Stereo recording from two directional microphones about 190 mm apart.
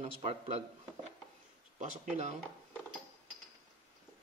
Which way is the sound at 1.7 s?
40° right (ahead or behind).